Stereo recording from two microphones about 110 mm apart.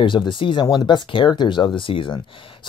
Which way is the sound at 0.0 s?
45° left (ahead or behind).